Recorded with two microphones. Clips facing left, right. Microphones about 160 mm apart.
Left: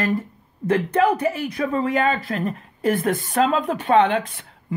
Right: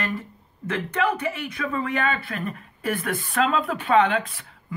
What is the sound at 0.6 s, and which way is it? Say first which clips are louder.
Speech: left 6 dB; 35° left (ahead or behind).